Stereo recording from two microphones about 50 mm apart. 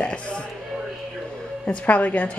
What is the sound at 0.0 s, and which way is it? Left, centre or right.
Music, centre.